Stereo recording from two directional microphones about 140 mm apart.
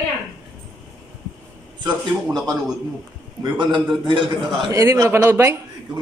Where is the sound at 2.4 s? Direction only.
Centre (ahead or behind).